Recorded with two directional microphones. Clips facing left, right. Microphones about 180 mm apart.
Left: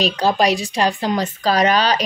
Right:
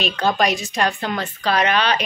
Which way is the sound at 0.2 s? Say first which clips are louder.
Left 1 dB; 35° left (ahead or behind).